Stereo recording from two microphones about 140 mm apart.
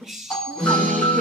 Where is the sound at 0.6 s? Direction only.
5° left (ahead or behind).